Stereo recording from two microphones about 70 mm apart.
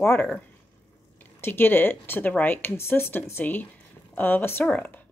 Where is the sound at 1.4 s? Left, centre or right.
Left.